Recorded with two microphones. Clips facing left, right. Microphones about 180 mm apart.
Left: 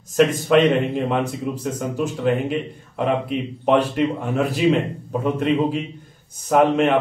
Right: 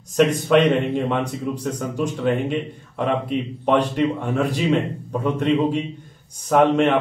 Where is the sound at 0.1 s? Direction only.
Centre (ahead or behind).